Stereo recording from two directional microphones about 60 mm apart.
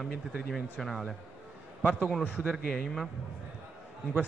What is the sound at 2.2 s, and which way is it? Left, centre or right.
Speech, right.